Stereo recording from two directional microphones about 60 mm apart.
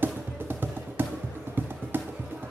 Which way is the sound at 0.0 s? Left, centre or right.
Right.